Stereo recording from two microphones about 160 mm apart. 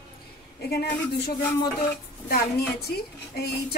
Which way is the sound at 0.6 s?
85° left.